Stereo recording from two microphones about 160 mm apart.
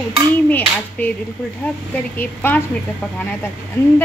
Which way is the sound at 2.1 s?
10° left (ahead or behind).